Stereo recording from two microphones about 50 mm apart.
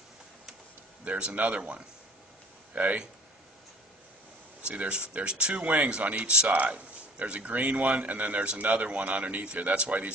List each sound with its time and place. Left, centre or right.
1.0 s speech: right
4.6 s speech: right